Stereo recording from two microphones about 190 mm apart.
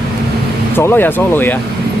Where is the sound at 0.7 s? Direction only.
10° left (ahead or behind).